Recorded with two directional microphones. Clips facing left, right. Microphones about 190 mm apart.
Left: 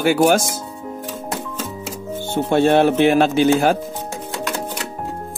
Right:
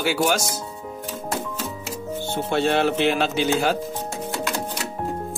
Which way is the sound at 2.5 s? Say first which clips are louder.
Left 6 dB; 50° left (ahead or behind).